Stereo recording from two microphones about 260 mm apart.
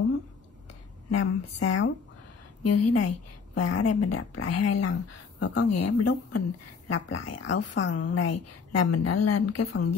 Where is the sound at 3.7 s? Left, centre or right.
Left.